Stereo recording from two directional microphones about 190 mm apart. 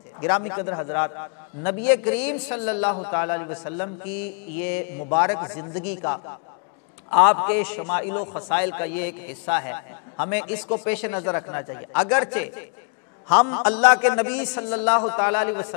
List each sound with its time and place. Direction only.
0.2 s a man's voice: 15° left (ahead or behind)
7.1 s a man's voice: 10° left (ahead or behind)